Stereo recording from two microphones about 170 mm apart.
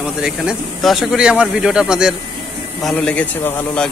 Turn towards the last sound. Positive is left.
turn(degrees=10)  # may be behind; listen again after turning